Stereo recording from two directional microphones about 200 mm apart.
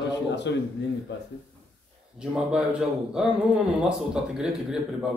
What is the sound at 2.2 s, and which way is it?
Speech, 5° right (ahead or behind).